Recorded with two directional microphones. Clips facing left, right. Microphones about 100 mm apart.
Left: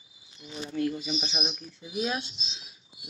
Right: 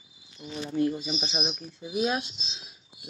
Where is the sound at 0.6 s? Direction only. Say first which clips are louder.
Right 3 dB; 25° right (ahead or behind).